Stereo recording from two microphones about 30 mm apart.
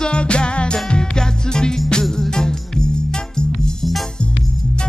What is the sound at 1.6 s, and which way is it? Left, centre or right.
Music, left.